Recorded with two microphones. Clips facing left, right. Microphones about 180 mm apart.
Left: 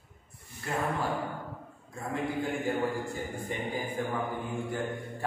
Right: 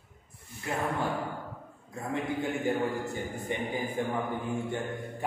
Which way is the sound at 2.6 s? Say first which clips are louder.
Right 2 dB; centre (ahead or behind).